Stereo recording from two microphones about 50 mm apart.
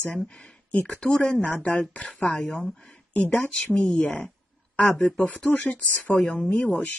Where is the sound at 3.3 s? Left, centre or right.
Left.